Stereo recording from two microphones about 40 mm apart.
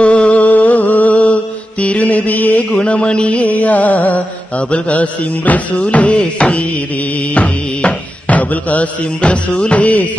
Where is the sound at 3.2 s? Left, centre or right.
Left.